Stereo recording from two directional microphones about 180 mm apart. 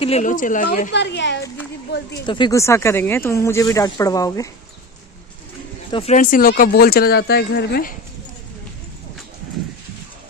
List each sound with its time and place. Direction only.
0.0 s a woman's voice: 40° left (ahead or behind)
0.9 s a woman's voice: 75° left (ahead or behind)
2.2 s speech: 25° left (ahead or behind)
5.9 s speech: 30° left (ahead or behind)
6.1 s speech: 50° left (ahead or behind)